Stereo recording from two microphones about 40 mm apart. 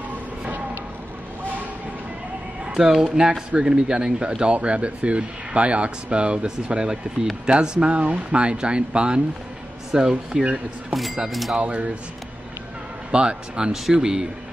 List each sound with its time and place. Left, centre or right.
2.6 s speech: centre
10.9 s speech: centre
11.5 s speech: right
13.1 s speech: right